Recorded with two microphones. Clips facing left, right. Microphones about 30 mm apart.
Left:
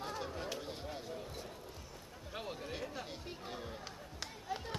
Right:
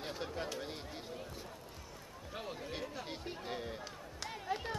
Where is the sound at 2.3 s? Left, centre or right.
Centre.